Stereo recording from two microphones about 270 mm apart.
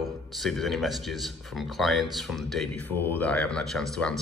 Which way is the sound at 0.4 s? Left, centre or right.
Centre.